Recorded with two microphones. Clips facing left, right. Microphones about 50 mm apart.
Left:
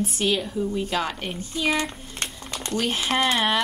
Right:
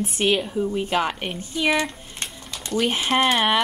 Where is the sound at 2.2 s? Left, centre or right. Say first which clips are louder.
Left 2 dB; left.